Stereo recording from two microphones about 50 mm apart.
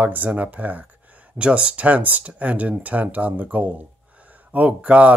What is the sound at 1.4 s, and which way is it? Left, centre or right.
Speech, right.